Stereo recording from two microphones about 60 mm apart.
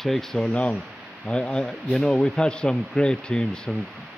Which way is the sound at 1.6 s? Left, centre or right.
Centre.